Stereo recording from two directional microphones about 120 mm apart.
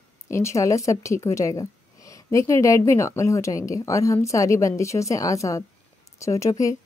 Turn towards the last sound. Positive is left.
turn(degrees=25)  # may be behind; listen again after turning